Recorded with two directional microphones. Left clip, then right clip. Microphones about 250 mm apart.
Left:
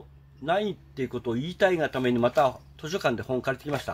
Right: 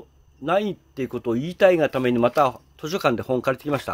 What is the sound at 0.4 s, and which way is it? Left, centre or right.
Speech, right.